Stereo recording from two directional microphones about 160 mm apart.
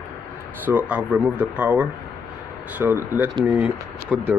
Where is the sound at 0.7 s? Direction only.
10° right (ahead or behind).